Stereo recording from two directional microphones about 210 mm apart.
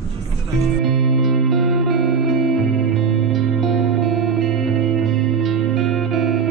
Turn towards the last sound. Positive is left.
turn(degrees=0)  # may be behind; listen again after turning